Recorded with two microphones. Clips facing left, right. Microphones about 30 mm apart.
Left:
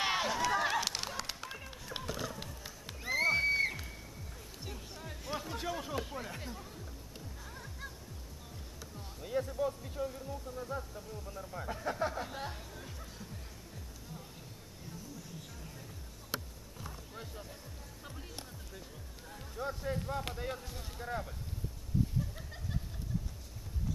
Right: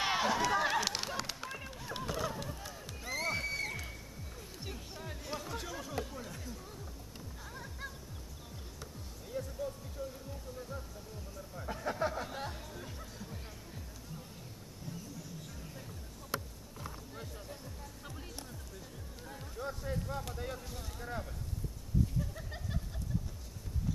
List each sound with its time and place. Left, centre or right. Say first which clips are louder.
0.0 s run: right 1 dB; centre
2.0 s a sound: right 3 dB; centre
2.4 s music: right 2 dB; centre
4.6 s music: right 1 dB; centre
5.3 s chatter: left 4 dB; centre; by 6.6 s left
7.5 s music: right 3 dB; centre
9.2 s a sound: left 6 dB; left
10.5 s music: left 4 dB; centre
11.6 s music: right 1 dB; centre
16.8 s music: right 1 dB; centre
19.5 s music: left 2 dB; centre
20.3 s speech: left 1 dB; centre